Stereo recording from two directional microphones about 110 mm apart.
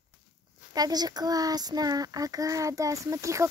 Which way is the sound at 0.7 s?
35° right (ahead or behind).